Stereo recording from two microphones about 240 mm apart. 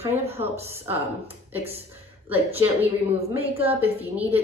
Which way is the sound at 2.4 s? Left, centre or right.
Right.